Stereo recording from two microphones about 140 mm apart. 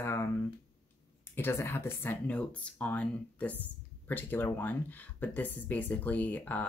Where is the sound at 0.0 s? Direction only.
20° left (ahead or behind).